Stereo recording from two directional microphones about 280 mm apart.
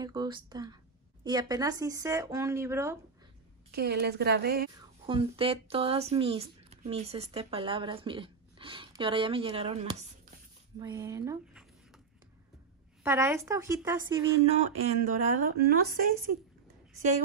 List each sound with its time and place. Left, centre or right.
0.0 s speech: centre
3.7 s a woman's voice: right
5.0 s speech: centre
10.8 s speech: centre
13.0 s speech: centre
14.4 s speech: right